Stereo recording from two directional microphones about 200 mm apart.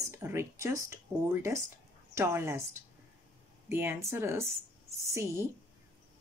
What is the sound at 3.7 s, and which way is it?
Speech, 10° right (ahead or behind).